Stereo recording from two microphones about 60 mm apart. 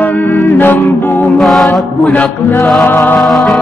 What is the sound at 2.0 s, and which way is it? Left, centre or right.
Mantra, left.